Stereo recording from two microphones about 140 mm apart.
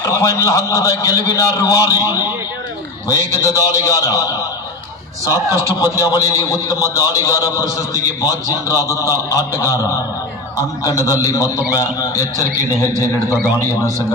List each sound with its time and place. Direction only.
0.1 s a man's voice: 25° left (ahead or behind)
5.2 s a man's voice: 20° right (ahead or behind)
5.8 s a man's voice: 25° left (ahead or behind)